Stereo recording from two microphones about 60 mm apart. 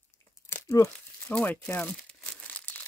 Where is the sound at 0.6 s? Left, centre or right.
Left.